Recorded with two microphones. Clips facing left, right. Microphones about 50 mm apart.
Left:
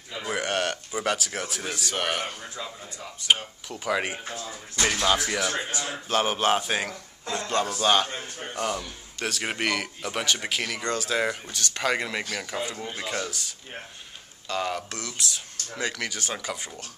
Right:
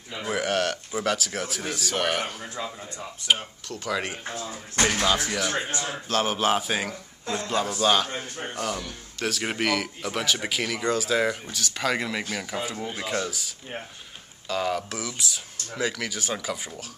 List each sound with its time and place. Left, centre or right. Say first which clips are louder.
0.1 s a man's voice: right 2 dB; centre